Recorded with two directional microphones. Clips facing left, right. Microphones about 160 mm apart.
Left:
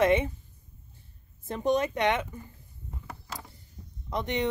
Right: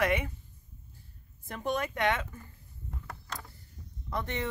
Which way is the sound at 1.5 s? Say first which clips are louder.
Left 6 dB; 20° left (ahead or behind).